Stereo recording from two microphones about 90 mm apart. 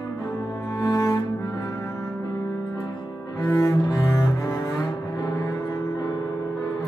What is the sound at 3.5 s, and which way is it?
Cello, 45° left (ahead or behind).